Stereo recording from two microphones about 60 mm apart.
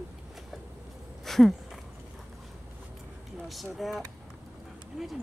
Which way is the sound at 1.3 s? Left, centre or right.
Centre.